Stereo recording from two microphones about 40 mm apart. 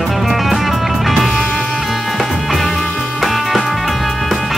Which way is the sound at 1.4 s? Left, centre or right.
Left.